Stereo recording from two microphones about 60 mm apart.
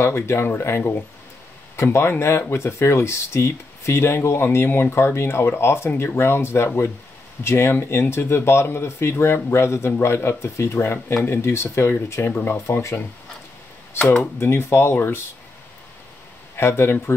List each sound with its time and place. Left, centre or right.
0.0 s speech: left
14.4 s speech: left
16.5 s speech: left